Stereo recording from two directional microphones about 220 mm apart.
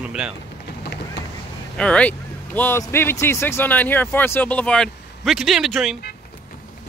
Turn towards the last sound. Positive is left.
turn(degrees=0)  # may be behind; listen again after turning